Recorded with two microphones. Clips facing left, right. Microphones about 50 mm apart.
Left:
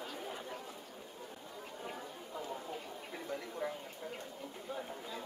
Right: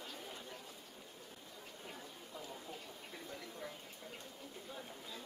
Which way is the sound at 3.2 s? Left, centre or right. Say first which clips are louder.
Left 9 dB; left.